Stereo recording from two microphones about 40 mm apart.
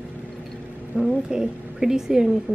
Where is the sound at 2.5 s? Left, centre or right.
Right.